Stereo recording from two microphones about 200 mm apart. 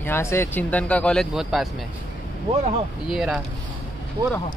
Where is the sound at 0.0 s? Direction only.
10° left (ahead or behind).